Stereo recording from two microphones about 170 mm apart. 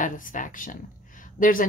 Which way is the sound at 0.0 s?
50° left (ahead or behind).